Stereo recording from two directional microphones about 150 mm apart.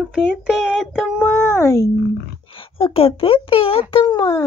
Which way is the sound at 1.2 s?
20° left (ahead or behind).